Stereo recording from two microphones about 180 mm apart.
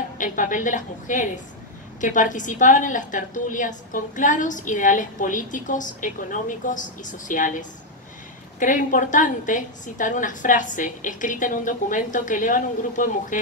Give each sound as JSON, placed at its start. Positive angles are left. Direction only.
{"t": 0.2, "sound": "a woman's voice", "side_deg": 45}